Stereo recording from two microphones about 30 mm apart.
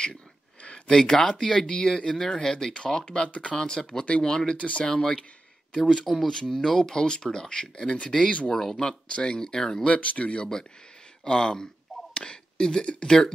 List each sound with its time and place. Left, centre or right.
0.8 s speech: centre
2.2 s speech: left
3.3 s speech: left
3.5 s speech: left
4.6 s speech: left
4.8 s speech: left
6.4 s speech: centre
9.8 s speech: left
11.2 s speech: left